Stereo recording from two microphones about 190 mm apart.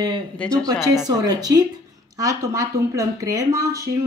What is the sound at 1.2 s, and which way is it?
Speech, 20° right (ahead or behind).